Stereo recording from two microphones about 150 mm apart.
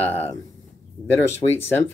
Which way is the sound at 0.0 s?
15° left (ahead or behind).